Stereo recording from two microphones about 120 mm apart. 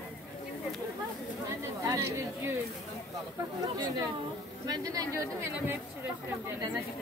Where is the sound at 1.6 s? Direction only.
25° right (ahead or behind).